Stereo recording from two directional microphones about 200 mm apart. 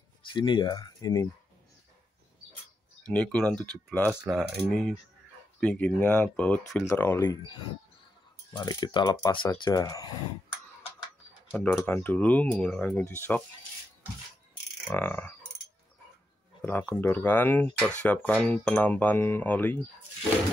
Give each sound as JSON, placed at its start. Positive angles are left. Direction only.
{"t": 0.3, "sound": "speech", "side_deg": 25}
{"t": 3.1, "sound": "coin", "side_deg": 5}
{"t": 5.6, "sound": "speech", "side_deg": 5}
{"t": 8.5, "sound": "speech", "side_deg": 20}
{"t": 11.5, "sound": "speech", "side_deg": 5}
{"t": 15.0, "sound": "speech", "side_deg": 10}
{"t": 16.6, "sound": "speech", "side_deg": 10}